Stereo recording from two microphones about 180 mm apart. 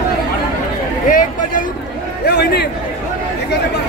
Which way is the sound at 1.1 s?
50° left (ahead or behind).